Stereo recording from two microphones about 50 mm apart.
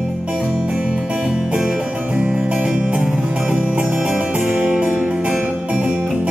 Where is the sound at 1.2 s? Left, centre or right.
Centre.